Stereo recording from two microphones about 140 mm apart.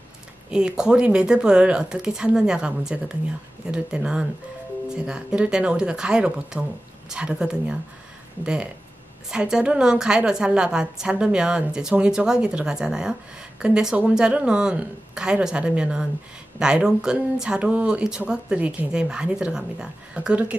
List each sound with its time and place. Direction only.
0.5 s speech: 5° right (ahead or behind)
9.3 s speech: 5° right (ahead or behind)